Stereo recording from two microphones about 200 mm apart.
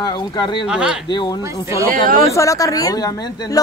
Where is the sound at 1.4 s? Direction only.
15° right (ahead or behind).